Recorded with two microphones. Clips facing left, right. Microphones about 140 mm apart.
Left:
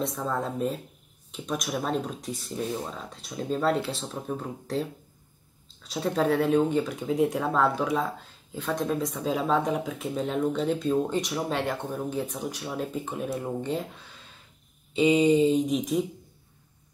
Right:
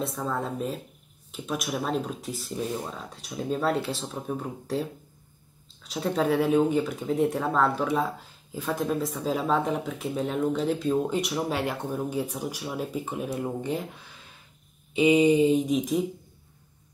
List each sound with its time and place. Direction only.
0.0 s speech: centre (ahead or behind)
15.0 s speech: 5° right (ahead or behind)